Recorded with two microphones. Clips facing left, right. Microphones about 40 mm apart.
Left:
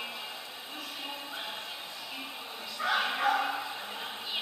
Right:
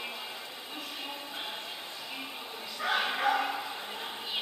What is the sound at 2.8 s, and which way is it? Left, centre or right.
Bow-wow, right.